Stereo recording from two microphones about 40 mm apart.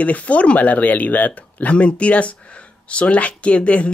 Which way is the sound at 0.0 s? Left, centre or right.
Left.